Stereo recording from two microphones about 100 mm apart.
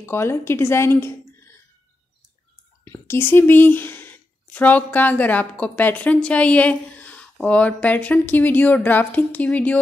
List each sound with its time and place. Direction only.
0.0 s speech: 25° left (ahead or behind)
2.8 s speech: 25° left (ahead or behind)